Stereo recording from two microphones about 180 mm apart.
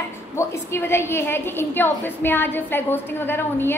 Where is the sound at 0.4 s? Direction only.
15° left (ahead or behind).